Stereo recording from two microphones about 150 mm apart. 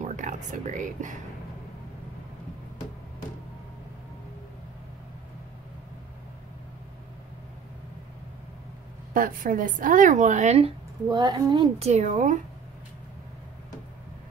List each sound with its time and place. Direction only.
0.0 s a sound: 55° right (ahead or behind)
9.1 s a woman's voice: 65° right (ahead or behind); by 10.7 s 45° right (ahead or behind)
11.1 s speech: 30° right (ahead or behind)
11.8 s a woman's voice: 50° right (ahead or behind)